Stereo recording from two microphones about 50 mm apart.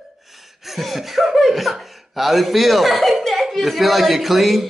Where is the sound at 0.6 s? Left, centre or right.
Centre.